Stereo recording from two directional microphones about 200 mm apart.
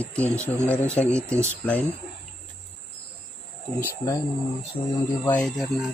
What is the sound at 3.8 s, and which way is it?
Speech, 15° left (ahead or behind).